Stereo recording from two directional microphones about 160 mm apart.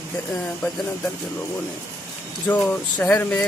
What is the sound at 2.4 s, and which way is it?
Speech, 10° left (ahead or behind).